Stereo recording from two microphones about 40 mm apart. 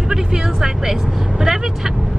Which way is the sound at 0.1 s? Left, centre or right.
Centre.